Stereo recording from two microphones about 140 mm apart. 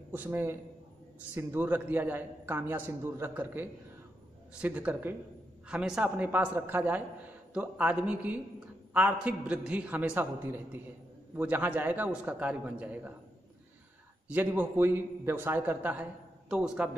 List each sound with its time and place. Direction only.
0.1 s a man's voice: 15° right (ahead or behind)
14.3 s a man's voice: 15° right (ahead or behind)